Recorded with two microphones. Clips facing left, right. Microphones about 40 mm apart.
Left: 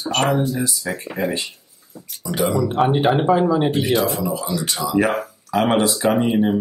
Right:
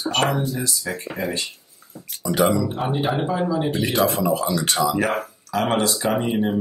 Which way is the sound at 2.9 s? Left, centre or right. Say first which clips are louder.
Left 7 dB; left.